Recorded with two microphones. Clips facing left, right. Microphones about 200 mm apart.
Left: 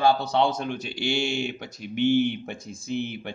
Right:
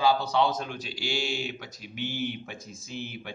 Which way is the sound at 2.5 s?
60° left (ahead or behind).